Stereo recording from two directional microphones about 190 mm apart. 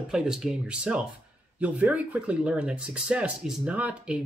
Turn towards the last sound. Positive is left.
turn(degrees=-5)  # may be behind; listen again after turning